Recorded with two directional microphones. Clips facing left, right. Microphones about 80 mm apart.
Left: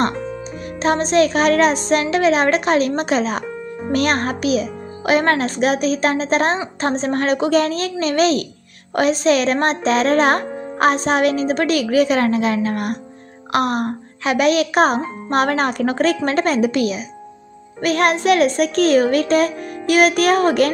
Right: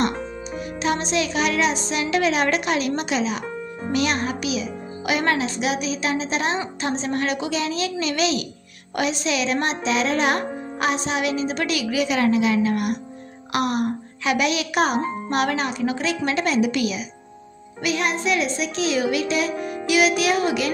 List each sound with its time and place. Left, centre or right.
0.0 s speech: left
2.0 s a child's voice: left
17.7 s a child's voice: left